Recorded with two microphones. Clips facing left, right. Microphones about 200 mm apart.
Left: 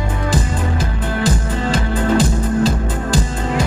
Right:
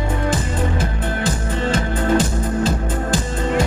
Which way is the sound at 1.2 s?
35° left (ahead or behind).